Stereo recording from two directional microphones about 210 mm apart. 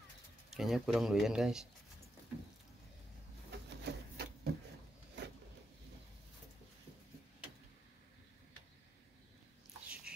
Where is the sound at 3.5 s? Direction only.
50° right (ahead or behind).